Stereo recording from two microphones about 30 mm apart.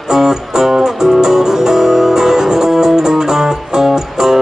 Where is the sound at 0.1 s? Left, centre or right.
Centre.